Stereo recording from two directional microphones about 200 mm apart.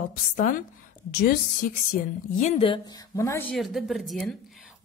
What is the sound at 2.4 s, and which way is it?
Speech, 30° left (ahead or behind).